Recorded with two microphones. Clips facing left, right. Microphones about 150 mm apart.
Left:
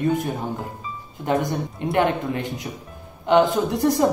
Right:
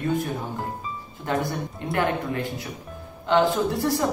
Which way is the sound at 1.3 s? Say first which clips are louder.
Left 4 dB; 20° left (ahead or behind).